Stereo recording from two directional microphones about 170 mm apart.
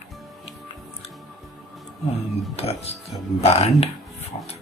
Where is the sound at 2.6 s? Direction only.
35° left (ahead or behind).